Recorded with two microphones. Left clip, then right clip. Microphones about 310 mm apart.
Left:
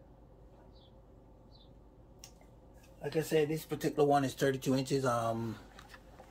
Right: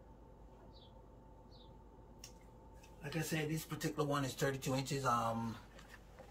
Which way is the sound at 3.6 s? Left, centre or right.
Left.